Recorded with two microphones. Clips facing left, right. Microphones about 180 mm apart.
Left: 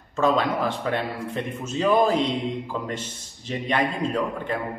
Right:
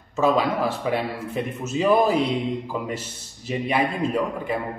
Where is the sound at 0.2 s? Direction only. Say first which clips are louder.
Right 1 dB; 10° right (ahead or behind).